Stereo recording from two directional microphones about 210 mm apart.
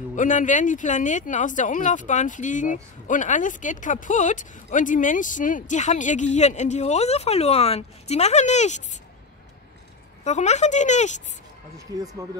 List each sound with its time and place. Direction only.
0.1 s speech: 35° left (ahead or behind)
10.2 s speech: 35° left (ahead or behind)
12.2 s speech: 15° right (ahead or behind)